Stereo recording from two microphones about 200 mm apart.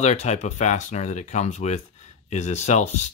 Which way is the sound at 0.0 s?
35° left (ahead or behind).